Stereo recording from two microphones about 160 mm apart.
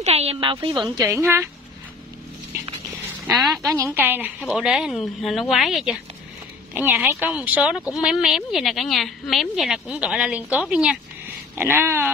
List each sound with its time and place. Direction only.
0.0 s a woman's voice: 40° right (ahead or behind)
1.0 s a woman's voice: 15° right (ahead or behind)
3.3 s speech: centre (ahead or behind)
3.6 s a woman's voice: 15° right (ahead or behind)